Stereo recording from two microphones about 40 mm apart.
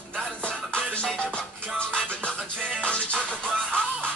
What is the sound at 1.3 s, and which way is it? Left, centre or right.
Music, left.